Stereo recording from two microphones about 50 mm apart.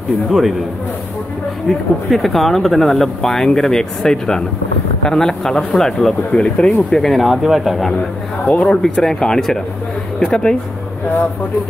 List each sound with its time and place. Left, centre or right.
0.3 s speech: centre
1.7 s speech: centre
7.0 s speech: centre
8.5 s speech: left
9.0 s speech: centre